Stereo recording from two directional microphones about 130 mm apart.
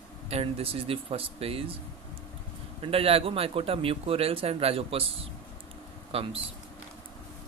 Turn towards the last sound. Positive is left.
turn(degrees=-50)  # may be behind; listen again after turning